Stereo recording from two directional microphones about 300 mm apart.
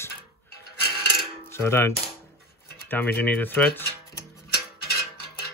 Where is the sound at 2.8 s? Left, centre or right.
Centre.